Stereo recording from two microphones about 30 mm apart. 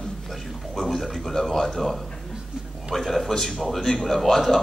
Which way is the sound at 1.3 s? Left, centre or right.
Left.